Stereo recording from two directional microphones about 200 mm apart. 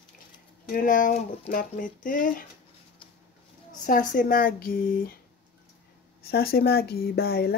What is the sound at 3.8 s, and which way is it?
Speech, 40° left (ahead or behind).